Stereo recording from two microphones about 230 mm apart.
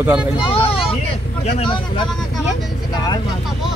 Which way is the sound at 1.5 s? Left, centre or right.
Left.